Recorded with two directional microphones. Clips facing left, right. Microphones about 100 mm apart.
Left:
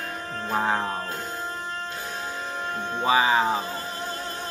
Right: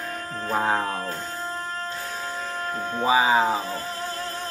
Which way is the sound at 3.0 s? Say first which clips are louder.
Right 1 dB; 5° right (ahead or behind).